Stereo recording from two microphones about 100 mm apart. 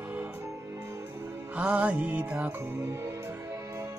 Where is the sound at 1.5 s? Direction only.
15° right (ahead or behind); by 4.0 s 30° right (ahead or behind).